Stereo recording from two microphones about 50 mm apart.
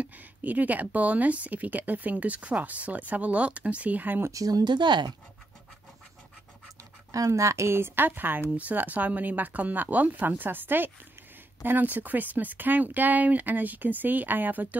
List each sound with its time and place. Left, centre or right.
0.0 s speech: right
7.1 s speech: right